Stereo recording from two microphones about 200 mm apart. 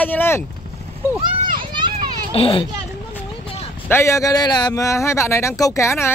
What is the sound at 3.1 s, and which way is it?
Speech, 10° left (ahead or behind).